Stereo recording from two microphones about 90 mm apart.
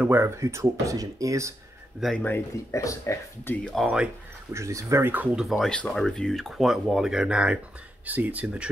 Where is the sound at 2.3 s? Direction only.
35° left (ahead or behind).